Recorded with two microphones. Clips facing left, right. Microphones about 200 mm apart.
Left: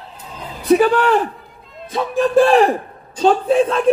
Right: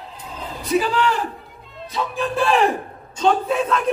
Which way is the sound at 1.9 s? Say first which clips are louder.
Left 6 dB; 45° left (ahead or behind).